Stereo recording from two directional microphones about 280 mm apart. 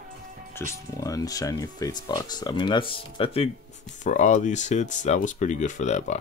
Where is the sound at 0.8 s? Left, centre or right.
Centre.